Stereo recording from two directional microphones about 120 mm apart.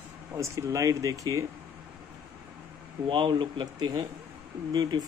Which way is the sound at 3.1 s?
45° right (ahead or behind).